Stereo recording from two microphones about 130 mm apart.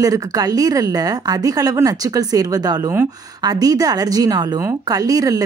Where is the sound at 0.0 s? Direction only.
30° right (ahead or behind).